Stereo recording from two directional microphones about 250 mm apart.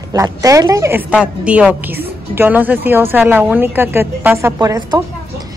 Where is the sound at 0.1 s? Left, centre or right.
Centre.